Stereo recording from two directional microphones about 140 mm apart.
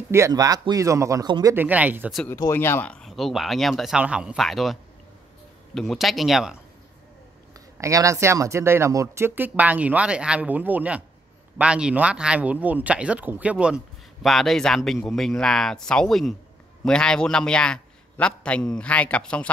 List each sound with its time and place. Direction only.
0.1 s speech: 25° right (ahead or behind)
1.5 s speech: 10° right (ahead or behind)
2.2 s speech: 20° left (ahead or behind); by 4.7 s centre (ahead or behind)
5.8 s speech: centre (ahead or behind)
7.7 s a man's voice: 20° right (ahead or behind); by 19.5 s 10° left (ahead or behind)